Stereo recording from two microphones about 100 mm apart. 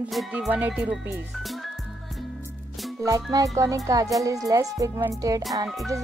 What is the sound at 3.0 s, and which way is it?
Speech, 35° right (ahead or behind).